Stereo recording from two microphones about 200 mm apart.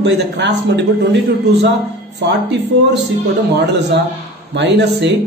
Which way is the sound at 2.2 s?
60° right (ahead or behind).